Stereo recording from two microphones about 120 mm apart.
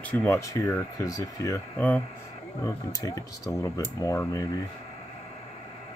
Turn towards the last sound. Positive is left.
turn(degrees=30)  # may be behind; listen again after turning